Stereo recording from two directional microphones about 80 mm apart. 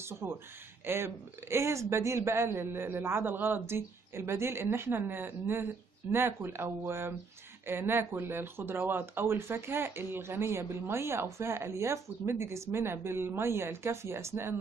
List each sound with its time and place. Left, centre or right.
0.0 s speech: right